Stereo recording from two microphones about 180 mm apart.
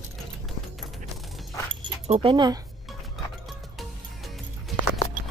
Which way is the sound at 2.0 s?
30° right (ahead or behind).